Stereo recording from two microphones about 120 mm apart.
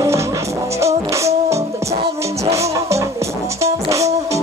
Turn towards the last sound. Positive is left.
turn(degrees=-25)  # may be behind; listen again after turning